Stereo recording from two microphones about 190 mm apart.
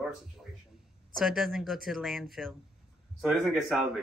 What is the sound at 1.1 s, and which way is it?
Speech, centre (ahead or behind).